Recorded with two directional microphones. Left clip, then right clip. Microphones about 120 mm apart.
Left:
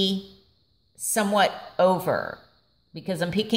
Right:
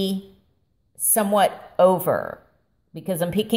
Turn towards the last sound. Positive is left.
turn(degrees=-25)  # may be behind; listen again after turning